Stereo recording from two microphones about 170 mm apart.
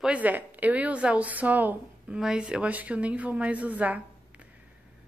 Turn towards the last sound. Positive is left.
turn(degrees=-10)  # may be behind; listen again after turning